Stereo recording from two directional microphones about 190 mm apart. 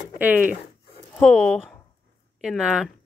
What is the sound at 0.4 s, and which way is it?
Zipper, 40° right (ahead or behind).